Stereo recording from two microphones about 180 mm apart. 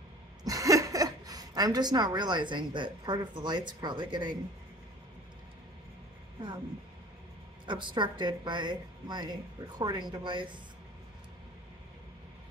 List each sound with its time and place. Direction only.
0.4 s a woman's voice: 20° right (ahead or behind)
7.6 s a woman's voice: 25° right (ahead or behind)